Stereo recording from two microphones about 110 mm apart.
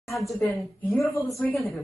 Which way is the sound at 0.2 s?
30° left (ahead or behind).